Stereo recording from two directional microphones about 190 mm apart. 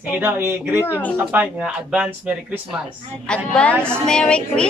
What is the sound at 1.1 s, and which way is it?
Speech, 10° right (ahead or behind).